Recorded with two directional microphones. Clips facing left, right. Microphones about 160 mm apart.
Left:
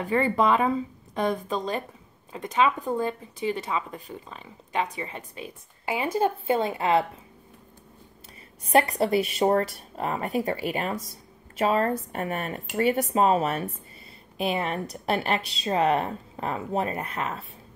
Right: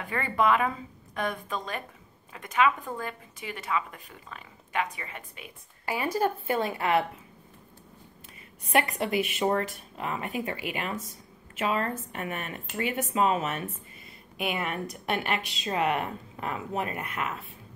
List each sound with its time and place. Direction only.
0.1 s speech: 30° left (ahead or behind)
8.7 s speech: 35° left (ahead or behind)